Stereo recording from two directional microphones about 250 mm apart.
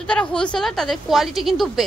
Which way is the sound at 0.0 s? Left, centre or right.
Centre.